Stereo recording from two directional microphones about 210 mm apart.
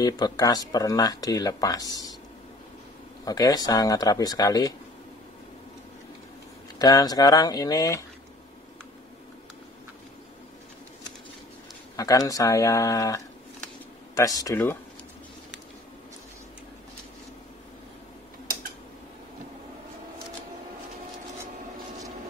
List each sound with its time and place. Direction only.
0.0 s speech: 20° left (ahead or behind)
3.3 s speech: 20° left (ahead or behind)
6.8 s speech: 20° left (ahead or behind)
12.0 s speech: 15° left (ahead or behind)